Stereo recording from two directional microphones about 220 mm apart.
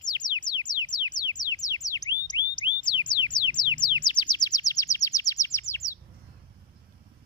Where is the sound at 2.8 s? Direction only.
20° left (ahead or behind).